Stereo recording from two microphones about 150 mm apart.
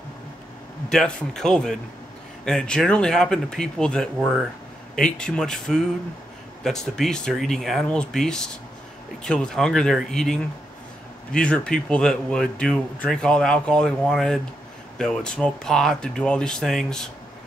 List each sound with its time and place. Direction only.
0.8 s speech: 5° left (ahead or behind)